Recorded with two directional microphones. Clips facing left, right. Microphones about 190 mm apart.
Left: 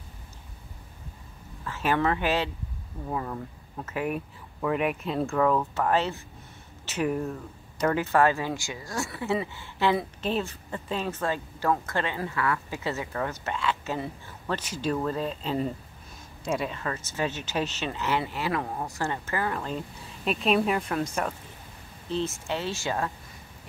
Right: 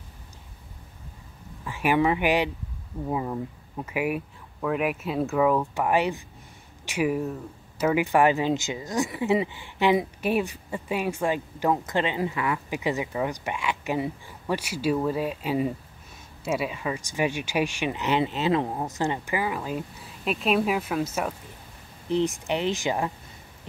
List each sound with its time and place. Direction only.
1.6 s speech: 15° right (ahead or behind)
22.0 s speech: 15° right (ahead or behind)